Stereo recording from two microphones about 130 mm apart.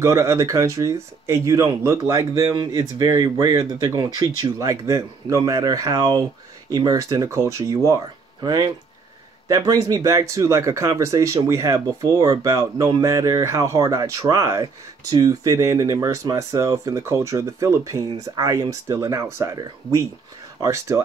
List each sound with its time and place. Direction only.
0.0 s speech: 20° right (ahead or behind)